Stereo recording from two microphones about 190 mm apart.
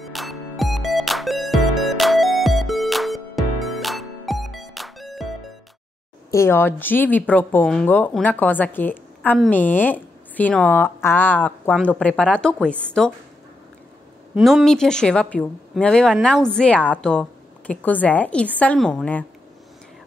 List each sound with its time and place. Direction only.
0.0 s music: centre (ahead or behind)
6.3 s speech: 15° left (ahead or behind)
14.3 s speech: centre (ahead or behind)